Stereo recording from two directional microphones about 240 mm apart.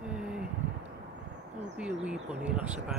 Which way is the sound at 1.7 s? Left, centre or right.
Centre.